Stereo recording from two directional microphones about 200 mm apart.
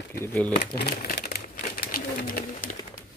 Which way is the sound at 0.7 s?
50° left (ahead or behind).